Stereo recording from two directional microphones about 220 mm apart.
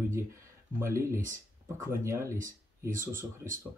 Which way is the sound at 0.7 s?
10° right (ahead or behind).